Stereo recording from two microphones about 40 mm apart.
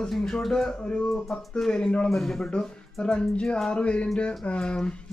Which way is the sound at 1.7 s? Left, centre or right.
Left.